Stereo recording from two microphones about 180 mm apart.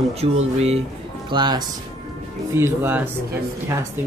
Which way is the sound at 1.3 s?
25° right (ahead or behind).